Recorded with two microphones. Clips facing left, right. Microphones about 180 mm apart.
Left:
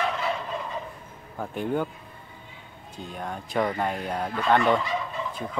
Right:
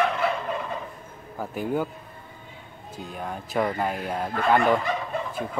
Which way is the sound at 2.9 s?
5° right (ahead or behind).